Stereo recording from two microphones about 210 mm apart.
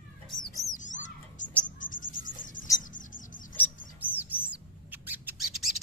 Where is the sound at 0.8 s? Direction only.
35° left (ahead or behind).